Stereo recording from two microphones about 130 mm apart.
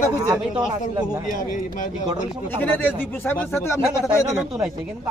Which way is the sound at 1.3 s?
80° left.